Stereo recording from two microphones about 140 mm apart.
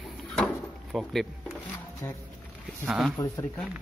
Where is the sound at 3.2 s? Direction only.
20° left (ahead or behind).